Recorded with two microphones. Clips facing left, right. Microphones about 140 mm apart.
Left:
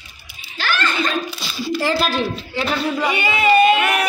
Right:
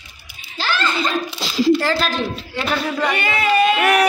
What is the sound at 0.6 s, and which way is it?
Chuckle, 30° right (ahead or behind).